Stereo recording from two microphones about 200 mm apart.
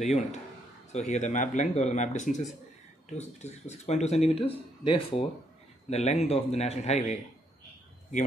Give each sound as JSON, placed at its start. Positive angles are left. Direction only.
{"t": 0.0, "sound": "speech", "side_deg": 35}